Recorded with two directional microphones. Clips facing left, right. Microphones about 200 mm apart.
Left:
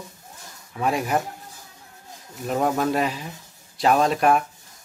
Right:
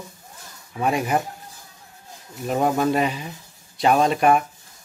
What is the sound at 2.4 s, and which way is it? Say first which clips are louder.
Speech: right 2 dB; 5° right (ahead or behind).